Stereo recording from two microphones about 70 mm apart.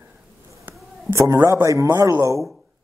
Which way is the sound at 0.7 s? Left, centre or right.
Right.